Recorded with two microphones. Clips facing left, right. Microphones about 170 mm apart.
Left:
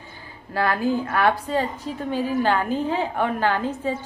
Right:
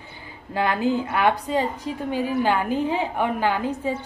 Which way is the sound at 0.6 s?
20° right (ahead or behind).